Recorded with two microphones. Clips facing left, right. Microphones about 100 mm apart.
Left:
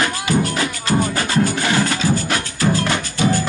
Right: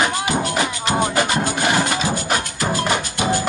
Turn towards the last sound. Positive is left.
turn(degrees=-15)  # may be behind; listen again after turning